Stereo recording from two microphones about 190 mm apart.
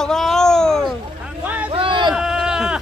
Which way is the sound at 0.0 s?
Centre (ahead or behind).